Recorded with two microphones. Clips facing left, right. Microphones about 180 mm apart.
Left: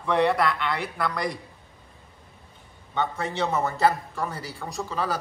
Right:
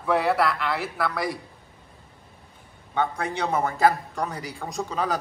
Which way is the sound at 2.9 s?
10° right (ahead or behind).